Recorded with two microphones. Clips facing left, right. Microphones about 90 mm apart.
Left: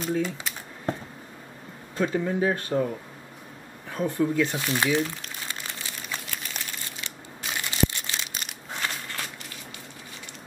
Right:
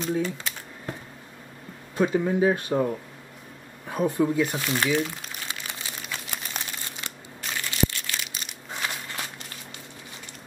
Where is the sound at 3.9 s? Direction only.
15° right (ahead or behind).